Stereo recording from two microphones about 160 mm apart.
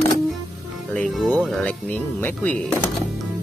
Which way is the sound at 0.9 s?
Centre (ahead or behind).